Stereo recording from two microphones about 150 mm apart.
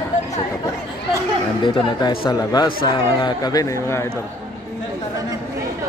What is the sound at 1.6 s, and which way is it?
Speech, 30° left (ahead or behind).